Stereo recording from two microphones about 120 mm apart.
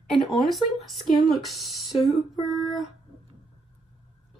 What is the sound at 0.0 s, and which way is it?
Speech, 5° left (ahead or behind).